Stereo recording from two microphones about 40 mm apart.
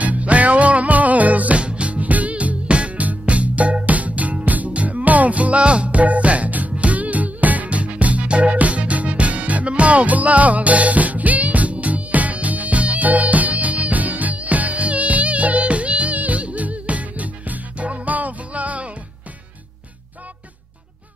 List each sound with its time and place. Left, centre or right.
0.0 s music: right
1.6 s music: right